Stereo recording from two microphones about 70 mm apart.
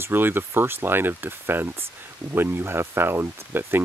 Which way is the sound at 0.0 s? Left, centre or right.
Right.